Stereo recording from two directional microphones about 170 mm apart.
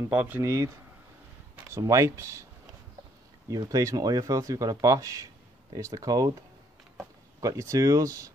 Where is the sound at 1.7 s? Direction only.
20° right (ahead or behind).